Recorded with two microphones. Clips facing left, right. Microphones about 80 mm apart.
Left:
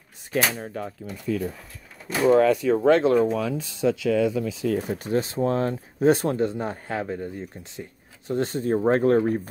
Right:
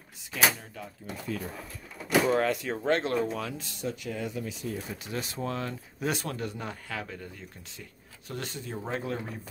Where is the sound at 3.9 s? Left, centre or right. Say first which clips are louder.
Left 14 dB; left.